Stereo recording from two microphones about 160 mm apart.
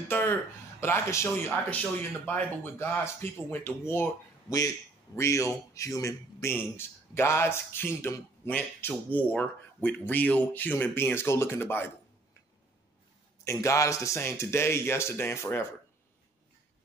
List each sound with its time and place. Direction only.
0.1 s a man's voice: 15° left (ahead or behind)
13.4 s a man's voice: 20° left (ahead or behind)